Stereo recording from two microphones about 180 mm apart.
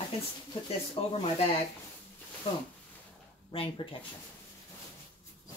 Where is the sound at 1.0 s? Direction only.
30° left (ahead or behind).